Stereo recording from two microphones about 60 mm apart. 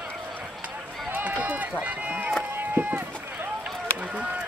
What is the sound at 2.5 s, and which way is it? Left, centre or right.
Run, right.